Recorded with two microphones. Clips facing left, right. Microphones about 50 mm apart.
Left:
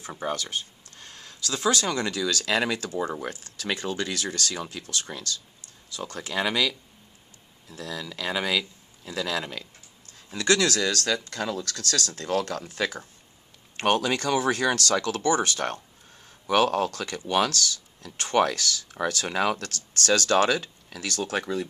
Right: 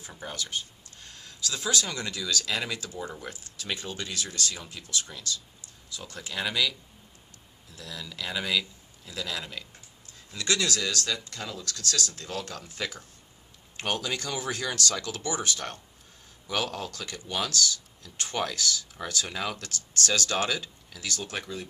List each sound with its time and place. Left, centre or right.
0.0 s speech: left
3.2 s speech: left
13.7 s speech: left
19.2 s speech: left
21.3 s speech: left